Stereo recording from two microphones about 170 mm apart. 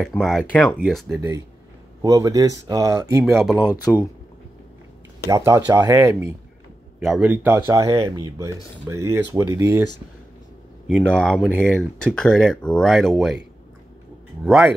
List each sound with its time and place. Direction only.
0.2 s speech: 5° left (ahead or behind)
2.0 s speech: 20° right (ahead or behind)
3.8 s speech: 15° left (ahead or behind)
5.3 s speech: 20° right (ahead or behind)
7.0 s speech: 5° right (ahead or behind)
11.0 s speech: 5° left (ahead or behind)
14.4 s speech: centre (ahead or behind)